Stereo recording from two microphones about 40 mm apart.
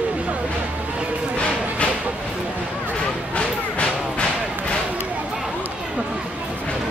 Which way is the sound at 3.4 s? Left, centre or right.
Left.